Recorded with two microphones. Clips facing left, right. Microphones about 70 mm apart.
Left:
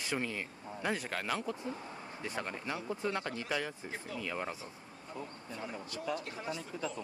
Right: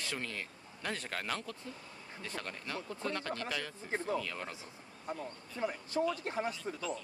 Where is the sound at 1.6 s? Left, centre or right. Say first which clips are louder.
Left 6 dB; left.